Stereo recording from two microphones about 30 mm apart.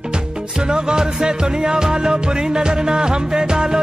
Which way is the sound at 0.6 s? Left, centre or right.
Right.